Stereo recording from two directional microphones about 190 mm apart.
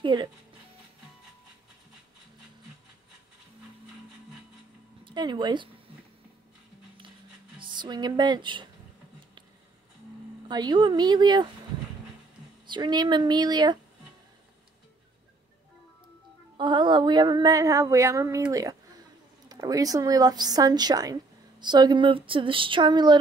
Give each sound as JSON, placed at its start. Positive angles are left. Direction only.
{"t": 0.0, "sound": "speech", "side_deg": -25}
{"t": 5.0, "sound": "speech", "side_deg": -25}
{"t": 7.5, "sound": "speech", "side_deg": -25}
{"t": 10.5, "sound": "a woman's voice", "side_deg": -20}
{"t": 12.6, "sound": "a woman's voice", "side_deg": -25}
{"t": 16.5, "sound": "a sound", "side_deg": -25}
{"t": 19.5, "sound": "a woman's voice", "side_deg": -20}